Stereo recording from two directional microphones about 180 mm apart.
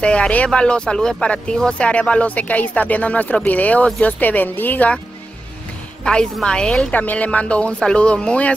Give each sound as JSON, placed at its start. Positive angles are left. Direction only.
{"t": 0.0, "sound": "speech", "side_deg": 5}
{"t": 6.0, "sound": "a woman's voice", "side_deg": 5}